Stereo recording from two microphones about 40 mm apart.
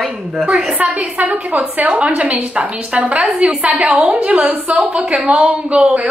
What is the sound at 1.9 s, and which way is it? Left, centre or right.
A woman's voice, right.